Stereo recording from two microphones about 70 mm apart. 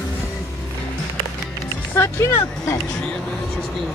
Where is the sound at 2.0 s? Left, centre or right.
Left.